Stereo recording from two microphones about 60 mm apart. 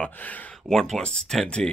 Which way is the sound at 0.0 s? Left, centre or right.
Left.